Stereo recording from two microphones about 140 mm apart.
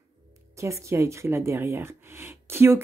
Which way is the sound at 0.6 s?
20° right (ahead or behind).